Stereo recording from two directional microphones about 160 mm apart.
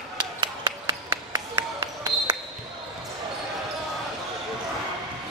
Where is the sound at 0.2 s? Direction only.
30° right (ahead or behind).